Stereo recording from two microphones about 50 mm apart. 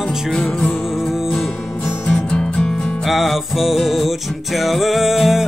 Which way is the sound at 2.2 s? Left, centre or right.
Centre.